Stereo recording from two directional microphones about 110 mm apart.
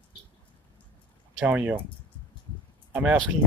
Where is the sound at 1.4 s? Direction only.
10° right (ahead or behind).